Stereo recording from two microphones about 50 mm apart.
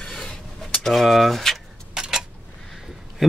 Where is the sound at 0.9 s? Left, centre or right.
Centre.